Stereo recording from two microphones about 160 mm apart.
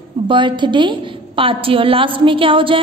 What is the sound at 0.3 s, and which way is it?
A woman's voice, 30° right (ahead or behind).